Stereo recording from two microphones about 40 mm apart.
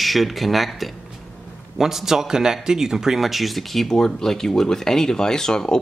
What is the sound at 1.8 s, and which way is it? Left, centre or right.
Speech, centre.